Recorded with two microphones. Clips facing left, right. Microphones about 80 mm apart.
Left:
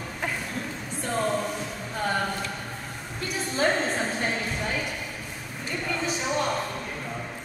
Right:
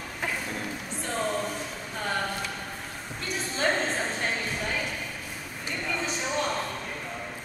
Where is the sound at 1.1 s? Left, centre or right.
Centre.